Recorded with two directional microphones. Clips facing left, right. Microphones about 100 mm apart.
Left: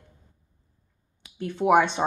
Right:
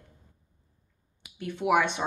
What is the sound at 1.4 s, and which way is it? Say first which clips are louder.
Speech: left 5 dB; 35° left (ahead or behind).